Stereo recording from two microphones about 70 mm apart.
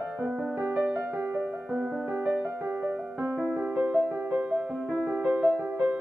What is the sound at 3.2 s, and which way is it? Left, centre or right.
Music, right.